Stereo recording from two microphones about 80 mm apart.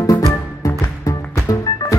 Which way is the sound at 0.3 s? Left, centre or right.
Left.